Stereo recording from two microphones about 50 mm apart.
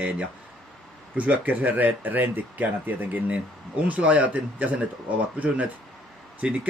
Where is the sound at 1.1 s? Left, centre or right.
Right.